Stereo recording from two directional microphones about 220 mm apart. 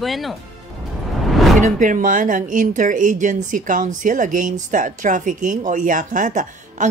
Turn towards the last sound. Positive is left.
turn(degrees=-35)  # may be behind; listen again after turning